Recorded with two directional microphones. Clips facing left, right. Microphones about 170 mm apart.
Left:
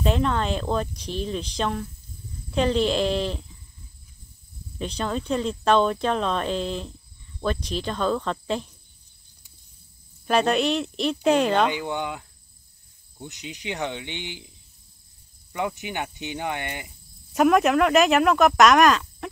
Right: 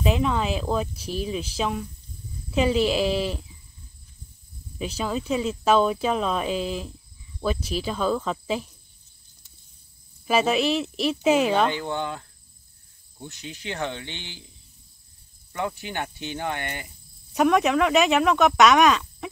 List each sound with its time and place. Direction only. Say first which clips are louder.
0.0 s speech: even; 5° right (ahead or behind)
4.7 s speech: even; 5° right (ahead or behind)
10.2 s speech: even; 5° right (ahead or behind)
11.7 s speech: even; 15° left (ahead or behind)
15.5 s speech: left 1 dB; 15° left (ahead or behind)
17.3 s speech: left 2 dB; centre (ahead or behind)